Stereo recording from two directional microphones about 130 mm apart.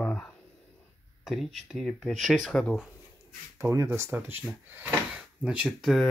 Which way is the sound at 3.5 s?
20° right (ahead or behind).